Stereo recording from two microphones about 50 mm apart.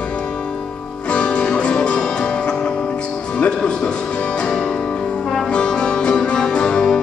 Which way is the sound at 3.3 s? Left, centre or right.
Centre.